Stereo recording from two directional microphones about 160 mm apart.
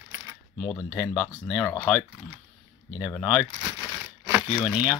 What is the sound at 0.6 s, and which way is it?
Speech, 25° left (ahead or behind).